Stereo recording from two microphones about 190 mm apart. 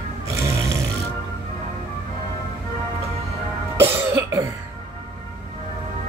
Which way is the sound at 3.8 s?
15° right (ahead or behind).